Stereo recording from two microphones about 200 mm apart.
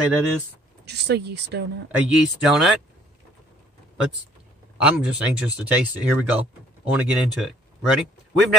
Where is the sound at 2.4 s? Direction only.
Centre (ahead or behind).